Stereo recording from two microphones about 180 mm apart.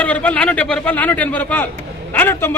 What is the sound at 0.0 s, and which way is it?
A man's voice, 10° left (ahead or behind).